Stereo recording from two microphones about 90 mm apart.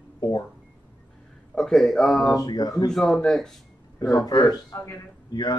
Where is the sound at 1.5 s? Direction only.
5° left (ahead or behind).